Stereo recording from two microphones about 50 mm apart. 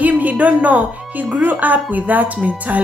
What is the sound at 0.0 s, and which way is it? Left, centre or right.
Speech, right.